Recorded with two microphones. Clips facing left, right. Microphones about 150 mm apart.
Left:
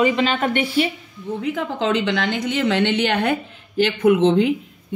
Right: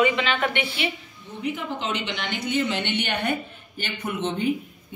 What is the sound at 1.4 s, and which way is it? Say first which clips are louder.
A woman's voice: left 5 dB; 90° left.